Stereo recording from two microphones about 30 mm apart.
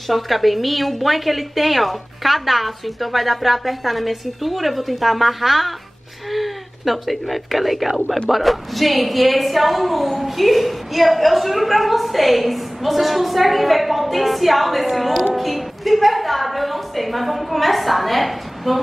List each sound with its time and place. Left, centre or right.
0.1 s a woman's voice: centre